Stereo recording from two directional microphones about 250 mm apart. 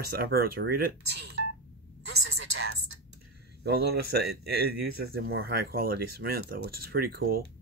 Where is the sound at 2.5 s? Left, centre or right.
Right.